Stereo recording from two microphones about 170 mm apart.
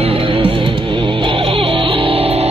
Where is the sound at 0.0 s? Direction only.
35° right (ahead or behind).